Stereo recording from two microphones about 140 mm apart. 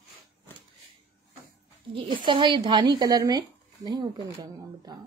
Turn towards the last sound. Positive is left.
turn(degrees=-25)  # may be behind; listen again after turning